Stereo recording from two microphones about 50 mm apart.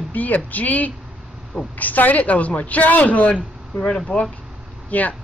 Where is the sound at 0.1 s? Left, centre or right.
Left; by 4.3 s centre.